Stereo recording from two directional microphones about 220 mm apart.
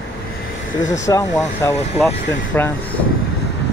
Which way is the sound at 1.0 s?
15° left (ahead or behind).